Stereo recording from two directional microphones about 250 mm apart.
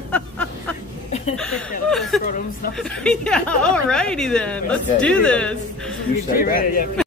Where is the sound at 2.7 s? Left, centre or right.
Centre.